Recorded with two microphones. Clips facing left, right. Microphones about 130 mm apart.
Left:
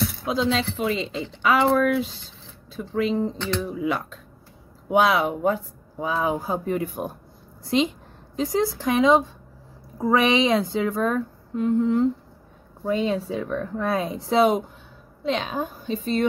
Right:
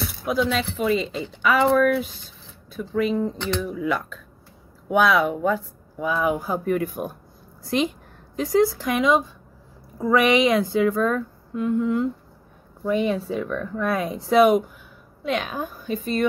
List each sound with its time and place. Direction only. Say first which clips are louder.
0.2 s speech: right 2 dB; 25° left (ahead or behind)
3.3 s speech: right 1 dB; 15° right (ahead or behind)
3.6 s speech: right 1 dB; 25° left (ahead or behind)